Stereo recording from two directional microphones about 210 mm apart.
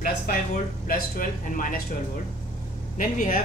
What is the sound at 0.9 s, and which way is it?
Speech, 40° left (ahead or behind).